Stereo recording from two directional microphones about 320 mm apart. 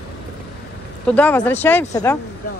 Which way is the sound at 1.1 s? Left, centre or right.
Centre.